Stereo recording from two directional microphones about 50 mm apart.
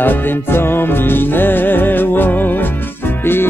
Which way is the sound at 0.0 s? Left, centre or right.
Left.